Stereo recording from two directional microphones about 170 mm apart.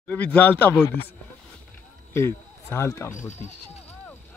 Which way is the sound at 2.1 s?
15° left (ahead or behind).